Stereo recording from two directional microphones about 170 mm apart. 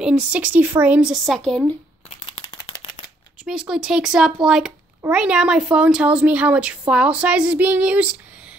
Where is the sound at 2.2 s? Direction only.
30° left (ahead or behind).